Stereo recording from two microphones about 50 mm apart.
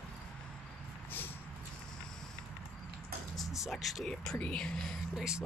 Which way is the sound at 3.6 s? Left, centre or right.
Centre.